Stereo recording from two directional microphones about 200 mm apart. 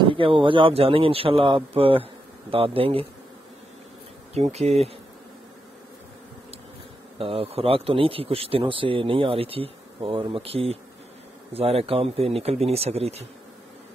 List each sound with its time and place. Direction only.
0.0 s speech: 25° right (ahead or behind)
4.3 s speech: 30° right (ahead or behind)
7.2 s speech: 30° right (ahead or behind)